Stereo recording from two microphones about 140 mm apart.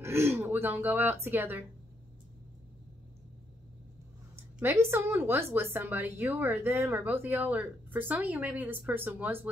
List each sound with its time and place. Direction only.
0.0 s speech: 15° right (ahead or behind)
4.6 s a woman's voice: 15° right (ahead or behind)